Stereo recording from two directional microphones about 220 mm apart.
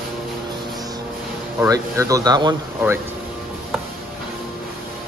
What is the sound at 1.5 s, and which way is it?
Speech, 15° right (ahead or behind).